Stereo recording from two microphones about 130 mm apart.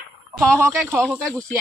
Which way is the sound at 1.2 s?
5° left (ahead or behind).